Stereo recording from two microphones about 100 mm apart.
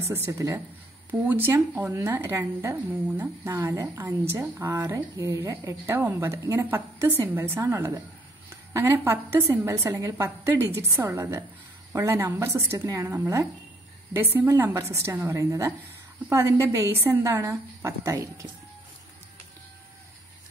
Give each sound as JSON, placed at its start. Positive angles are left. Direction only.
{"t": 0.0, "sound": "a woman's voice", "side_deg": -25}
{"t": 1.2, "sound": "a woman's voice", "side_deg": -20}